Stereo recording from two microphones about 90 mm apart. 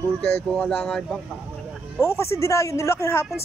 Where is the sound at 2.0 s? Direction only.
30° left (ahead or behind).